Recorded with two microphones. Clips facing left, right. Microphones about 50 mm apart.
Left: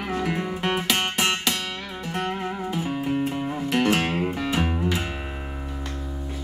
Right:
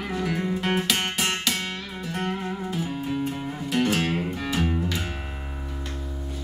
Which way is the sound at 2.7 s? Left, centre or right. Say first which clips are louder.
Left 4 dB; left.